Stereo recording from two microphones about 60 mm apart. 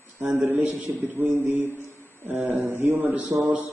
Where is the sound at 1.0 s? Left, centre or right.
Right.